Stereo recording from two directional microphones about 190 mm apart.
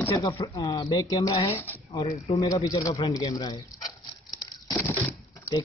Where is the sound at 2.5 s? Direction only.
20° left (ahead or behind).